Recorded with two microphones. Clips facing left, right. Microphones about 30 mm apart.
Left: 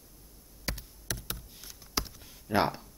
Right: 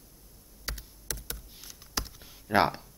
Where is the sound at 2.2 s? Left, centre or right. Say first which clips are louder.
Right 4 dB; centre.